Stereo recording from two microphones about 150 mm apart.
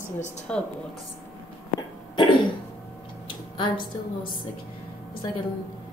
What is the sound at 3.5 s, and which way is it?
Speech, 30° left (ahead or behind).